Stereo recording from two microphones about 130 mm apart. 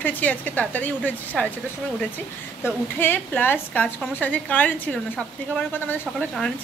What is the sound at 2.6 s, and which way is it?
Speech, 15° left (ahead or behind).